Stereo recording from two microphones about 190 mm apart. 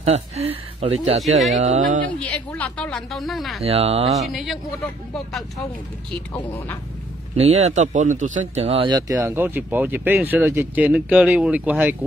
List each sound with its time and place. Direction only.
0.0 s speech: 35° right (ahead or behind)
2.1 s a woman's voice: 5° left (ahead or behind)
3.6 s speech: 30° right (ahead or behind)
4.3 s a woman's voice: centre (ahead or behind)
7.3 s speech: 35° right (ahead or behind)
9.1 s speech: 10° right (ahead or behind)